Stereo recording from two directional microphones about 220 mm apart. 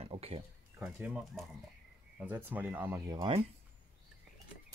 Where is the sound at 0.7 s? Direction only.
10° right (ahead or behind).